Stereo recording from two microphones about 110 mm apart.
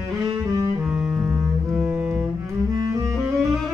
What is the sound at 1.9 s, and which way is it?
Double bass, 10° right (ahead or behind).